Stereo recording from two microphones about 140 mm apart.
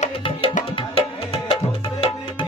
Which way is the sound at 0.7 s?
40° left (ahead or behind).